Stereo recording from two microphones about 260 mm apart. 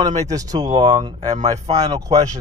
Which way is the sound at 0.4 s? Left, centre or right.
Centre.